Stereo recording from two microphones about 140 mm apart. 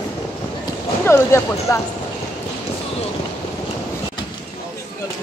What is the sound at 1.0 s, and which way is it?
Speech, 20° left (ahead or behind).